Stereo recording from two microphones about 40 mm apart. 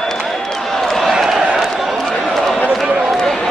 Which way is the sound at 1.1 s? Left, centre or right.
Centre.